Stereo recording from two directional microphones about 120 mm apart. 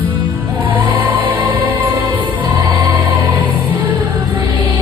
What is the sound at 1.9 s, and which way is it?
Music, 40° right (ahead or behind).